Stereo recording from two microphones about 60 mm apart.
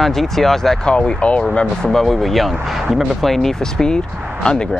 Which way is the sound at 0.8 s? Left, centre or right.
Centre.